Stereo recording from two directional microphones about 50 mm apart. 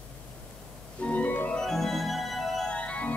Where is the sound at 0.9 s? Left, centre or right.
Left.